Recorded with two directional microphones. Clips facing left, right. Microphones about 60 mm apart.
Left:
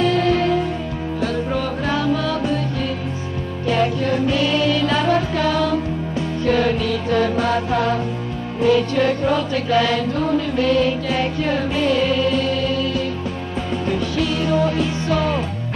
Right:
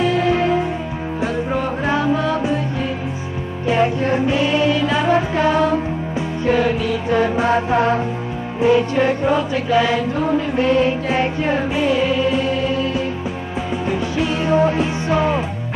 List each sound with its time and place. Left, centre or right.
0.0 s music: centre
3.6 s music: right
6.4 s music: centre